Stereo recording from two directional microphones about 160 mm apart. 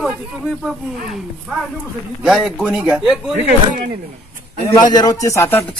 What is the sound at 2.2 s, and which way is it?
Speech, 5° right (ahead or behind).